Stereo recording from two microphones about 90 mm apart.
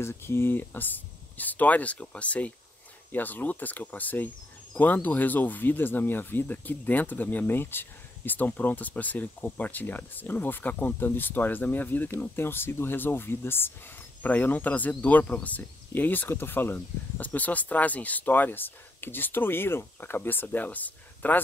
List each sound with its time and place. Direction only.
0.0 s speech: 30° left (ahead or behind)